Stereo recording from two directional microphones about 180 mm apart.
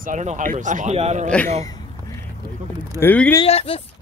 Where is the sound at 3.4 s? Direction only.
30° left (ahead or behind).